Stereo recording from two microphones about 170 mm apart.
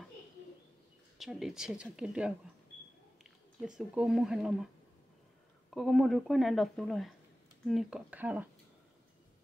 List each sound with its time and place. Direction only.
1.1 s speech: centre (ahead or behind)
5.7 s speech: centre (ahead or behind)